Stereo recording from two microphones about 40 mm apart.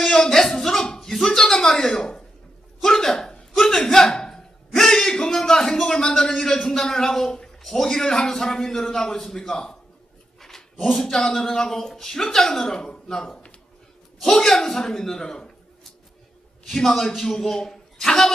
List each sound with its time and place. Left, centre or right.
0.1 s a sound: centre
6.7 s a man's voice: centre
10.4 s dog: centre
11.1 s a man's voice: centre
16.6 s a man's voice: centre